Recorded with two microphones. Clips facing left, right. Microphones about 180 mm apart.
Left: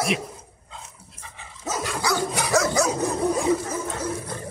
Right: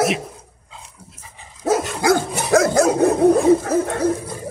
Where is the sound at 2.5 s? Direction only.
55° right (ahead or behind).